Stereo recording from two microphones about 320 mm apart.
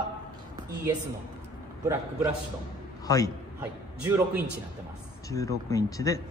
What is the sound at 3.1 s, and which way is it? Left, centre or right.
Speech, centre.